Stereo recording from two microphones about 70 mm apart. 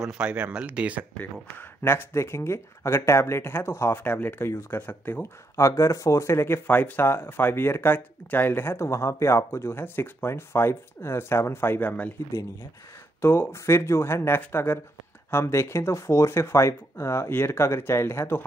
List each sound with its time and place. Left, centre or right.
0.2 s speech: centre
1.1 s speech: left
4.0 s speech: left
4.7 s speech: left
5.2 s speech: left
13.2 s speech: left